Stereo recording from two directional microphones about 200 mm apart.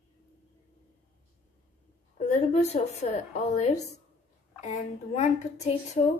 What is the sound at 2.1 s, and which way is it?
A woman's voice, 35° left (ahead or behind).